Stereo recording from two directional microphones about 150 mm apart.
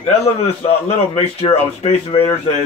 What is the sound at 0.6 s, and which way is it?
Speech, 40° left (ahead or behind).